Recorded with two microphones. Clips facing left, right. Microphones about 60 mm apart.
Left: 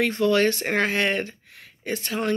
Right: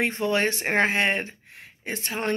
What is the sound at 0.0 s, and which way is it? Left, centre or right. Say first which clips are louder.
Speech: left 4 dB; right.